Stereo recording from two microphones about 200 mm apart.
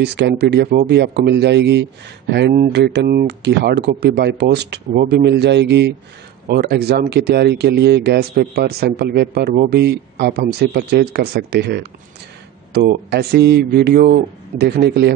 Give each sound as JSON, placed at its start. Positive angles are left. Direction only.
{"t": 0.0, "sound": "speech", "side_deg": -55}